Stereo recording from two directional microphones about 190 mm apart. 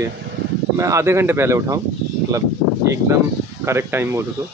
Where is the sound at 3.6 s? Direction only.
10° right (ahead or behind).